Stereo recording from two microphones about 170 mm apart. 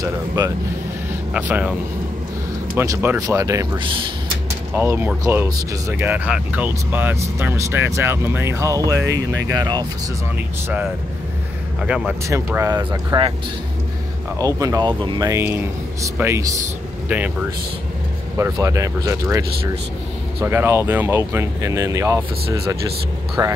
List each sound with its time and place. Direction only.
1.3 s speech: 10° right (ahead or behind); by 4.0 s 30° right (ahead or behind)
4.7 s speech: 15° right (ahead or behind)
11.8 s speech: 5° right (ahead or behind)
12.3 s speech: 15° right (ahead or behind)
14.4 s speech: 20° right (ahead or behind)
18.4 s speech: 20° right (ahead or behind)
20.4 s speech: 15° right (ahead or behind)